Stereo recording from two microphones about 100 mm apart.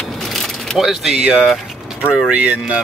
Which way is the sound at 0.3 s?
5° left (ahead or behind).